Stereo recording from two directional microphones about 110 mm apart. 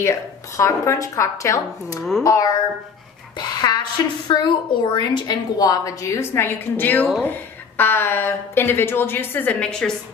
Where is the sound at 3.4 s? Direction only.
40° left (ahead or behind).